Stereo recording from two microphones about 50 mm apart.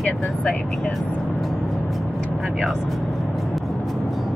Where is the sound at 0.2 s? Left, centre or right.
Left.